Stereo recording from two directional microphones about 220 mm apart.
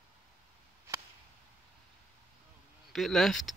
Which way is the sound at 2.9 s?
Centre (ahead or behind).